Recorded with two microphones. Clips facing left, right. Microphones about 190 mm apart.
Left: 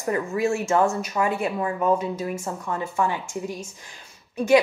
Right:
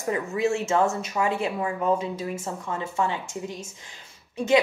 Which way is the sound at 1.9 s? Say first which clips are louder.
Left 2 dB; 25° right (ahead or behind).